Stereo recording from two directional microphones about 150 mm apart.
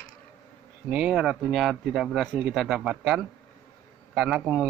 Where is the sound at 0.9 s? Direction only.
5° right (ahead or behind).